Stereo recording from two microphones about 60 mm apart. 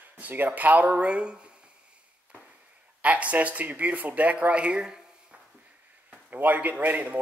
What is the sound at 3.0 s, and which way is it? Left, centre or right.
Speech, right.